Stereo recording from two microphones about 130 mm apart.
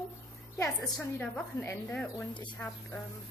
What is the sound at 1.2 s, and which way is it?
Speech, 15° left (ahead or behind).